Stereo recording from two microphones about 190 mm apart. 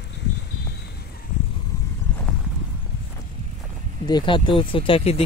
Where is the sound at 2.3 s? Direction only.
5° left (ahead or behind).